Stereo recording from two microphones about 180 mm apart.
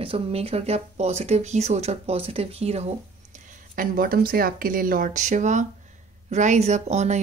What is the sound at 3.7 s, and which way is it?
Speech, 55° right (ahead or behind).